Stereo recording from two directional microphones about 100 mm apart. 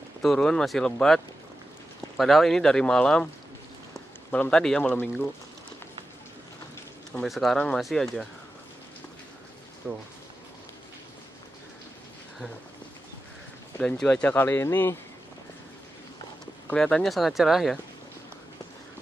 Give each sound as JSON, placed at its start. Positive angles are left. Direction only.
{"t": 0.2, "sound": "speech", "side_deg": 5}
{"t": 4.3, "sound": "a man's voice", "side_deg": 10}
{"t": 7.2, "sound": "speech", "side_deg": 0}
{"t": 9.8, "sound": "speech", "side_deg": -10}
{"t": 13.7, "sound": "a man's voice", "side_deg": 10}
{"t": 14.2, "sound": "speech", "side_deg": 20}
{"t": 16.7, "sound": "speech", "side_deg": 5}